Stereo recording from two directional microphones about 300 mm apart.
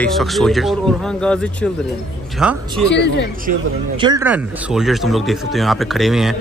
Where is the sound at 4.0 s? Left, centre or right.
Centre.